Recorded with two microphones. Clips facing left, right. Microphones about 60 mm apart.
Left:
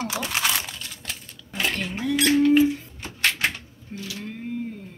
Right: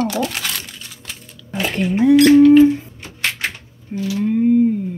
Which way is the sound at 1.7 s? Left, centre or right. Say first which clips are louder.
Right 17 dB; centre.